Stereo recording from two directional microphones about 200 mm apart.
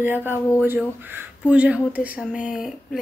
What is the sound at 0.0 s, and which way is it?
A woman's voice, 10° right (ahead or behind).